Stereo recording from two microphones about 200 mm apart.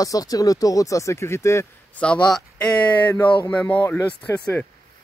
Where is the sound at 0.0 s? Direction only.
15° left (ahead or behind).